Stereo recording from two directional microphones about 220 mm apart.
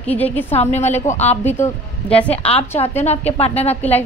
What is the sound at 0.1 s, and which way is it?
Speech, 10° left (ahead or behind).